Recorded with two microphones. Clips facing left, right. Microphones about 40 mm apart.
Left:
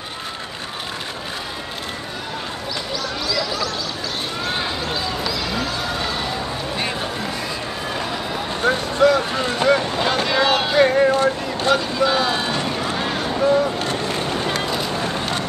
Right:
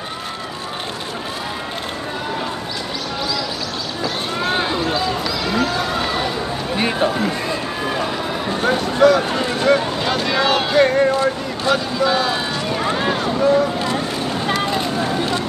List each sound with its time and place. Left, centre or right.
4.5 s basketball bounce: centre
4.9 s basketball bounce: centre
6.8 s run: centre
8.6 s a sound: centre
11.6 s speech: centre
13.2 s a sound: centre